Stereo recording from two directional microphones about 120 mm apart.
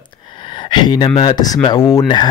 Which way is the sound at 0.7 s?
40° left (ahead or behind).